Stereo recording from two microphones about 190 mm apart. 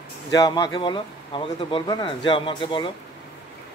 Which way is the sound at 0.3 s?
20° left (ahead or behind).